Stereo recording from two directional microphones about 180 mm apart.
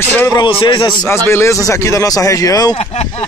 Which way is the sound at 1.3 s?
15° left (ahead or behind).